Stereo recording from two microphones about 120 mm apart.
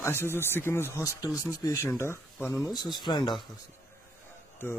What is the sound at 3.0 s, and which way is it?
Speech, 40° left (ahead or behind).